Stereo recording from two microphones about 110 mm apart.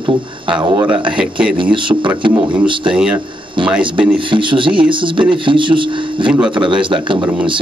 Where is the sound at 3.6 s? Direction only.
50° right (ahead or behind).